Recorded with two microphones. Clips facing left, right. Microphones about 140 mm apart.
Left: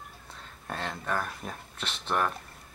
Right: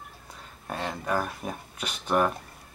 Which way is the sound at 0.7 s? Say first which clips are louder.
Right 3 dB; 5° right (ahead or behind).